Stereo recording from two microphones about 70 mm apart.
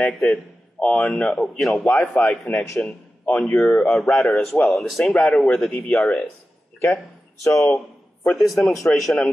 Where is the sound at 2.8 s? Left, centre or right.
Left.